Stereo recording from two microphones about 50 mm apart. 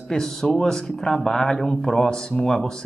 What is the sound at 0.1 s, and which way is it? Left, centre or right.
Speech, centre.